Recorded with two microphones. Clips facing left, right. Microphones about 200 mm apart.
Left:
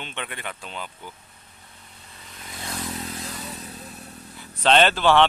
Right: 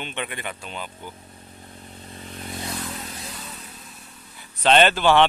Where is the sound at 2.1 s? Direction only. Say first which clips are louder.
Right 8 dB; 35° right (ahead or behind).